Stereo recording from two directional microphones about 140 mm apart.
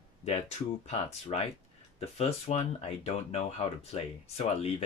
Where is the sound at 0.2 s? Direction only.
50° left (ahead or behind).